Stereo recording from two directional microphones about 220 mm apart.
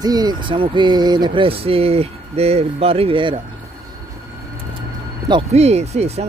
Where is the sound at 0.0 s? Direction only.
15° right (ahead or behind).